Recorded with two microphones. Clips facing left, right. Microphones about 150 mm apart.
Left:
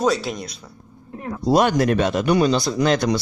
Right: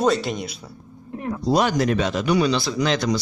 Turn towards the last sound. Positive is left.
turn(degrees=55)  # may be behind; listen again after turning